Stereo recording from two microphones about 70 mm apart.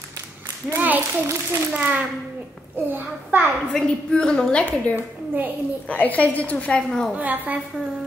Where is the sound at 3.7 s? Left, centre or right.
Centre.